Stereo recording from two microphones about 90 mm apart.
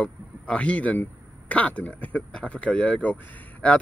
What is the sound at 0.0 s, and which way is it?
A man's voice, 10° left (ahead or behind).